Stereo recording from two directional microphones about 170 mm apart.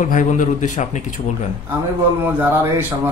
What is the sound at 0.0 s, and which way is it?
A man's voice, 50° left (ahead or behind).